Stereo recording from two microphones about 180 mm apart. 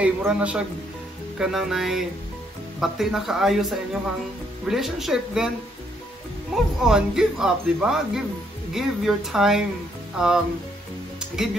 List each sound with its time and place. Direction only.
0.0 s a man's voice: 5° right (ahead or behind)
6.8 s speech: 5° right (ahead or behind)